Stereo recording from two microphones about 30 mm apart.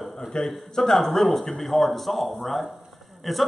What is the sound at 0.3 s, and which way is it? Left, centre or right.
Speech, left.